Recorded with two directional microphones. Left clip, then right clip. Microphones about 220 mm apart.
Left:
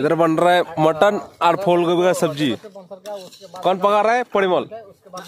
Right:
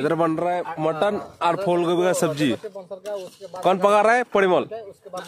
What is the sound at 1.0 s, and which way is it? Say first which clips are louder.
A man's voice: left 6 dB; 20° left (ahead or behind).